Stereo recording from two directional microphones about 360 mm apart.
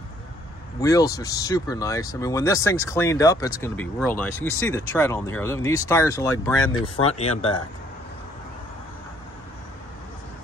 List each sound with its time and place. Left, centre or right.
0.7 s speech: centre